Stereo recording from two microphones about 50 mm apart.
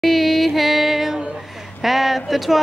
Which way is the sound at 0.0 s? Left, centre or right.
Centre.